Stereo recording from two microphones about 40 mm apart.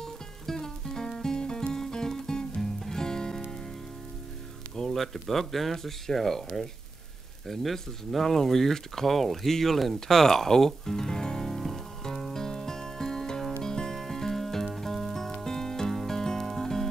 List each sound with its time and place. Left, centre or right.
0.0 s music: centre
4.9 s speech: centre
9.9 s music: centre
13.6 s rain on surface: centre